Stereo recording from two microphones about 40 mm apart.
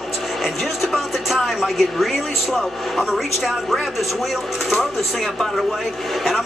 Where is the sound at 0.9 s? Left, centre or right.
Centre.